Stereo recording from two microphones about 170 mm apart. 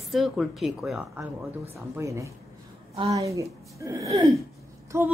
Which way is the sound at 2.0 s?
15° right (ahead or behind).